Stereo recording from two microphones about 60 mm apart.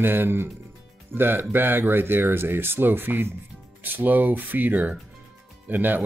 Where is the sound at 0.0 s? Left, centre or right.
Right.